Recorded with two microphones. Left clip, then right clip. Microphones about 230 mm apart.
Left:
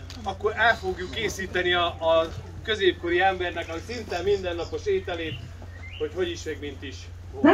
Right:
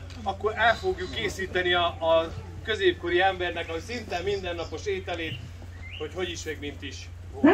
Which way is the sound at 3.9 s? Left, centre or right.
Right.